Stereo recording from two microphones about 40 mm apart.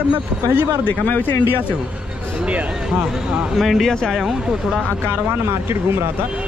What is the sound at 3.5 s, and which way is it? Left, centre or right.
Speech, centre.